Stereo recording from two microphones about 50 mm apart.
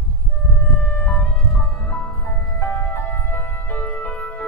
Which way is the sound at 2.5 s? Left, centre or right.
Left.